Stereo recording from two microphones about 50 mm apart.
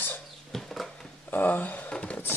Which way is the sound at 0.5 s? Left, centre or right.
Centre.